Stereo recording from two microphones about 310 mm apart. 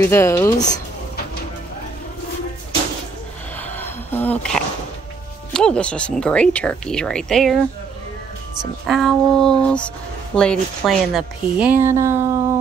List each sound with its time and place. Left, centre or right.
0.0 s speech: centre
3.5 s a sound: centre
5.5 s speech: centre
8.8 s speech: centre